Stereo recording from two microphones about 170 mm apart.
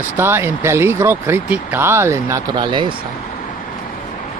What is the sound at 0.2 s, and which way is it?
Speech, 15° right (ahead or behind).